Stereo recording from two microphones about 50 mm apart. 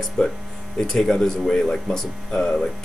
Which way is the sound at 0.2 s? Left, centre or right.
Centre.